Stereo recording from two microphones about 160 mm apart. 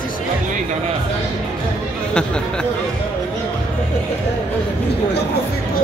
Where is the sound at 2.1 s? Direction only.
5° left (ahead or behind).